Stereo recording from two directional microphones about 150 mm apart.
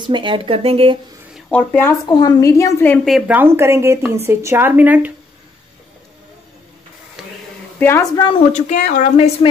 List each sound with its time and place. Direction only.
0.0 s speech: 30° right (ahead or behind)
1.5 s speech: 10° left (ahead or behind)
2.0 s a woman's voice: 25° left (ahead or behind)
3.1 s a woman's voice: centre (ahead or behind)
3.3 s a woman's voice: 15° right (ahead or behind)
7.2 s a sound: 5° right (ahead or behind)
7.8 s speech: 15° left (ahead or behind)
8.5 s speech: 55° left (ahead or behind)